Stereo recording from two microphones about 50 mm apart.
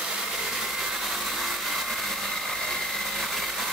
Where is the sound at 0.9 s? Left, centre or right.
Centre.